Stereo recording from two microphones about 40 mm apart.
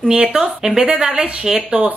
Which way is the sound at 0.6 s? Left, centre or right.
Centre.